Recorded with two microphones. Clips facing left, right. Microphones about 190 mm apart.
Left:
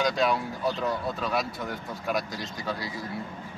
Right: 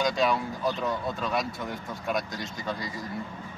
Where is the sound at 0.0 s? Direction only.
Centre (ahead or behind).